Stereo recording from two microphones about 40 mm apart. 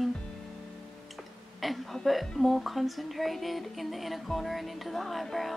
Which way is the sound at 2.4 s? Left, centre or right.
Centre.